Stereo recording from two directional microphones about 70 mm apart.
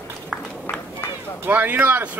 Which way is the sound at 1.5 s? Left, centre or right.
Right.